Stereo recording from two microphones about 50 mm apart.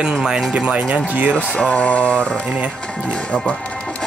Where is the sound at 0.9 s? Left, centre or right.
Right.